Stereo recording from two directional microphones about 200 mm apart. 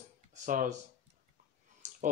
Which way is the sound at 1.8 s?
35° right (ahead or behind).